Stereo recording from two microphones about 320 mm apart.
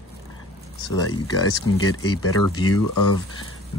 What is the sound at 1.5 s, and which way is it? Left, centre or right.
Speech, left.